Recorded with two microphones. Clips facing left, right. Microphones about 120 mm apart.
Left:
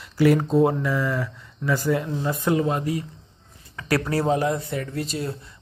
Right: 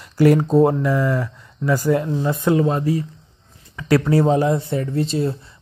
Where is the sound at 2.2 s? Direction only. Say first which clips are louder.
Right 4 dB; 25° right (ahead or behind).